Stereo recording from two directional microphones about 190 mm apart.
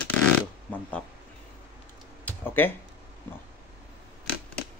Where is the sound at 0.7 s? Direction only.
10° left (ahead or behind).